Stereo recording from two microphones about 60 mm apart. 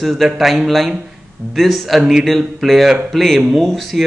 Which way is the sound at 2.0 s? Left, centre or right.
Centre.